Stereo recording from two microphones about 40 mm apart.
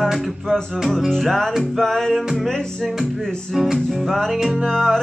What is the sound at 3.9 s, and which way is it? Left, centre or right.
Music, centre.